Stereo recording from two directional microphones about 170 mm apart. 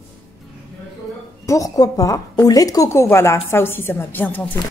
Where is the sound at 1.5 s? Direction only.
20° left (ahead or behind).